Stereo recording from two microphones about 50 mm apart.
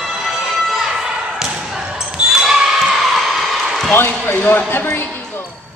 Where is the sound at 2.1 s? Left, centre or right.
Centre.